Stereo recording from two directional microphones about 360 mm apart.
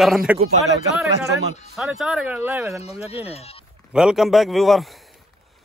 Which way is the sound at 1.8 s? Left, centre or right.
Centre.